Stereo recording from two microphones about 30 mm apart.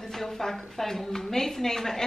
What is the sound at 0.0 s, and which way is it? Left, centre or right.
Speech, centre.